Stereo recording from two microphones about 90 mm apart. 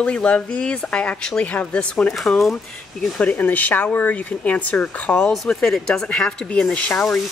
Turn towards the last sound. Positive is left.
turn(degrees=10)  # may be behind; listen again after turning